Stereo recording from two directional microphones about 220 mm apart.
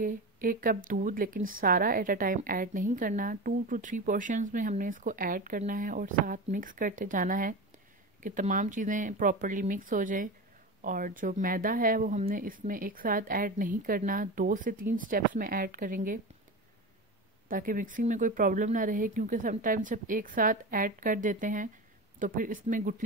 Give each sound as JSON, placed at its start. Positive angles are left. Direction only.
{"t": 0.0, "sound": "speech", "side_deg": -40}
{"t": 17.5, "sound": "speech", "side_deg": -40}